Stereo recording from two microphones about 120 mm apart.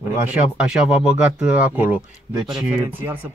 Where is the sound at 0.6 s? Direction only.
5° right (ahead or behind).